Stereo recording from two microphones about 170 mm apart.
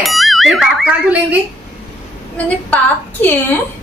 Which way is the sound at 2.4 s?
10° left (ahead or behind).